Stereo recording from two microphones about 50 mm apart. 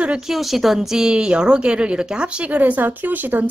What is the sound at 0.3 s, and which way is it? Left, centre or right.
Speech, centre.